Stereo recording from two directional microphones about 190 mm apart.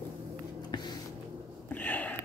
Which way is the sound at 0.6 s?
20° left (ahead or behind).